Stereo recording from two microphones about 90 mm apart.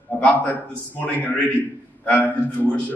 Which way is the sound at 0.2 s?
15° left (ahead or behind).